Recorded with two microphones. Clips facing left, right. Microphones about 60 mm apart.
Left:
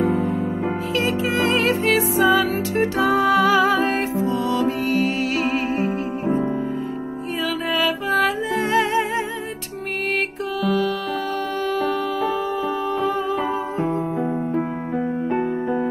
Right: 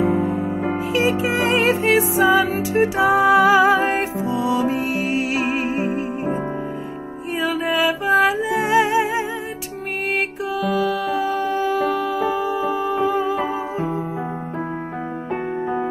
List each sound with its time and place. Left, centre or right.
0.0 s music: centre
7.7 s music: centre
10.6 s music: centre
15.3 s music: centre